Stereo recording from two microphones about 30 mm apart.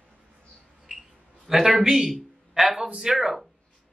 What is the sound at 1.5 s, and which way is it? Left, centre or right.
Speech, centre.